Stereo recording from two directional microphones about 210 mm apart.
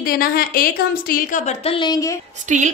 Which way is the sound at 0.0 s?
45° left (ahead or behind).